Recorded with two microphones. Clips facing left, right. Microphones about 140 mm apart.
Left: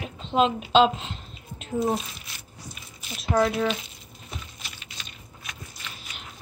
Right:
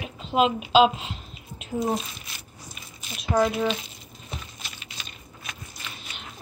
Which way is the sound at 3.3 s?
15° right (ahead or behind).